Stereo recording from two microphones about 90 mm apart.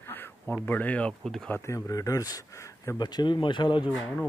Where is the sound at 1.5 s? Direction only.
30° left (ahead or behind).